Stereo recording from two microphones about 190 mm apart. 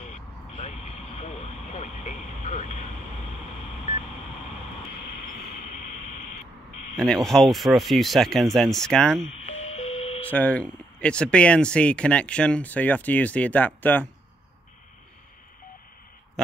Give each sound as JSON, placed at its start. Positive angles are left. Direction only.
{"t": 0.0, "sound": "vehicle", "side_deg": 40}
{"t": 7.0, "sound": "speech", "side_deg": 5}
{"t": 9.6, "sound": "radio", "side_deg": 35}
{"t": 10.3, "sound": "speech", "side_deg": 5}